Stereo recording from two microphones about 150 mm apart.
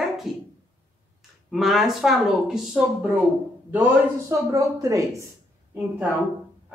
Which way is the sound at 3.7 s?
20° right (ahead or behind).